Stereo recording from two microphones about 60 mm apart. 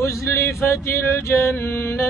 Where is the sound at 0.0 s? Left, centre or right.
Left.